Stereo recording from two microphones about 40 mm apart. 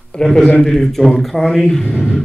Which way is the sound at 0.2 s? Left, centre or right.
Centre.